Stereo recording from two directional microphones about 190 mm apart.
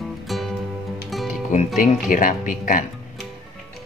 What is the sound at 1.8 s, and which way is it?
Speech, 45° left (ahead or behind).